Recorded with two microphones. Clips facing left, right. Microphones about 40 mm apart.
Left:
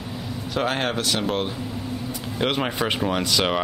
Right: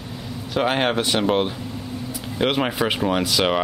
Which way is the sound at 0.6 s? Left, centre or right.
Centre.